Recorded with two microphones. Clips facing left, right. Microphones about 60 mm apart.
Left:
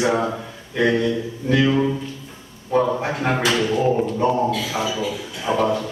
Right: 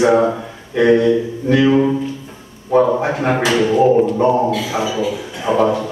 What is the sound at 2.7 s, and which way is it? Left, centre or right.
A man's voice, centre.